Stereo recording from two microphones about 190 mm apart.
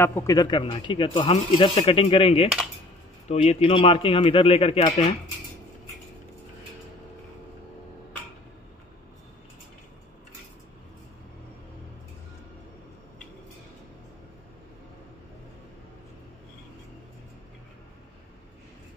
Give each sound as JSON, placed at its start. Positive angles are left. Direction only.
{"t": 0.0, "sound": "speech", "side_deg": 15}